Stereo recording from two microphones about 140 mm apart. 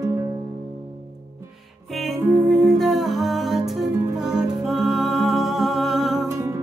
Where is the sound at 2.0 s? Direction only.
Centre (ahead or behind).